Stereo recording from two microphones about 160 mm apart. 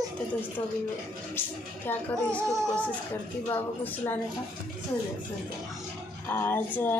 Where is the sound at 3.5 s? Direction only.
10° left (ahead or behind).